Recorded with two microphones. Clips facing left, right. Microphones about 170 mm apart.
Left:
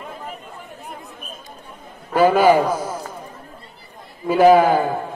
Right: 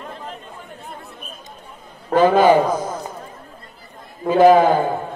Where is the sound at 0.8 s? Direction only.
15° left (ahead or behind).